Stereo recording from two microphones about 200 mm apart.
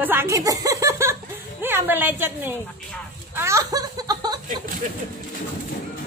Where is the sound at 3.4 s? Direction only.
15° right (ahead or behind).